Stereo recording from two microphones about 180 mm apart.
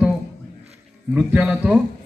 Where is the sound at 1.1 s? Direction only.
10° right (ahead or behind).